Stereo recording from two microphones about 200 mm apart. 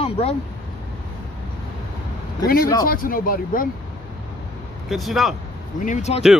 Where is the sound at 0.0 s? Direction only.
30° left (ahead or behind).